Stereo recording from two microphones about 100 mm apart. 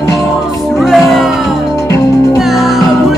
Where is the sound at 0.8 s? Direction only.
Centre (ahead or behind).